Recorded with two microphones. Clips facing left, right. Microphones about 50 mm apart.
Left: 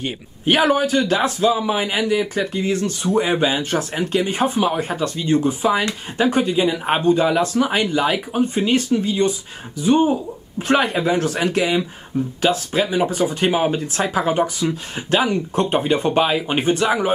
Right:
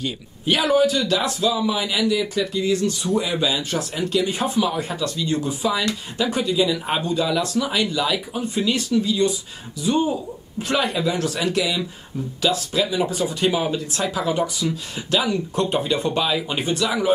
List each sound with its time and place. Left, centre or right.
0.0 s a man's voice: left